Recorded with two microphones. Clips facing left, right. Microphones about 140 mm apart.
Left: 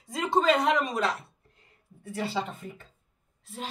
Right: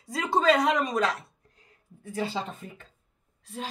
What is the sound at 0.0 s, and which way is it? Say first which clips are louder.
A woman's voice: even; centre (ahead or behind).